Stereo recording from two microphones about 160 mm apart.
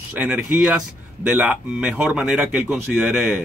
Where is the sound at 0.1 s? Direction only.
10° right (ahead or behind).